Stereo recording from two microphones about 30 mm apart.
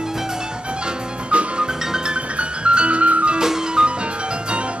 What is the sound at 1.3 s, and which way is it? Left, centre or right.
Music, right.